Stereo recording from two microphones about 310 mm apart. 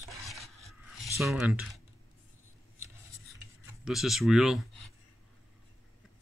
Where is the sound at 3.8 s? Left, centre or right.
Centre.